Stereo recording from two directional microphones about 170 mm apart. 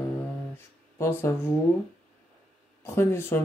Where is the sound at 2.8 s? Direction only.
15° left (ahead or behind).